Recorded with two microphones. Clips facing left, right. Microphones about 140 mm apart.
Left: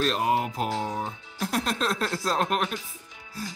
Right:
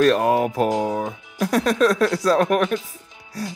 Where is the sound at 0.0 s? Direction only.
60° right (ahead or behind).